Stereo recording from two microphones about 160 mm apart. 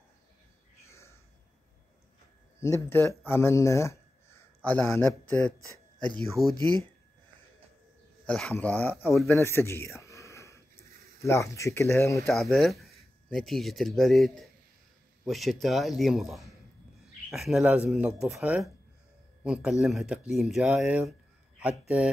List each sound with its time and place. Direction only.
0.8 s a sound: 15° left (ahead or behind)
2.6 s speech: 15° left (ahead or behind)
8.3 s speech: 5° left (ahead or behind)
9.0 s speech: centre (ahead or behind)
9.3 s a sound: 15° left (ahead or behind)
11.1 s speech: 20° left (ahead or behind)
12.3 s speech: centre (ahead or behind)